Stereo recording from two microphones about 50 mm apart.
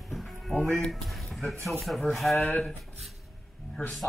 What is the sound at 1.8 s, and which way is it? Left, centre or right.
Speech, centre.